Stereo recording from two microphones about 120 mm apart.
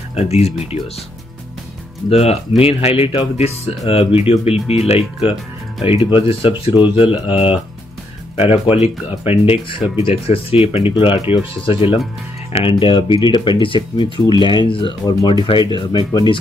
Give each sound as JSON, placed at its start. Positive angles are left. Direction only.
{"t": 0.1, "sound": "speech", "side_deg": 60}
{"t": 2.0, "sound": "speech", "side_deg": 60}
{"t": 5.8, "sound": "speech", "side_deg": 45}
{"t": 9.2, "sound": "speech", "side_deg": 55}